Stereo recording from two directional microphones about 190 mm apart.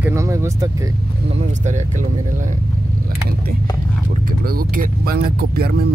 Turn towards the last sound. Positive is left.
turn(degrees=-55)  # may be behind; listen again after turning